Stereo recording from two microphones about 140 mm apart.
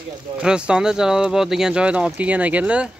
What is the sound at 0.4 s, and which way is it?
Speech, 5° right (ahead or behind).